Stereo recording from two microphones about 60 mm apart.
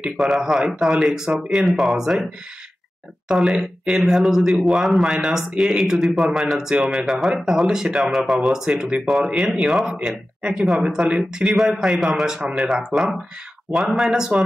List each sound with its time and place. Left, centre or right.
0.2 s a man's voice: centre
3.3 s a man's voice: centre
8.6 s speech: centre
9.0 s a man's voice: centre
10.8 s a man's voice: centre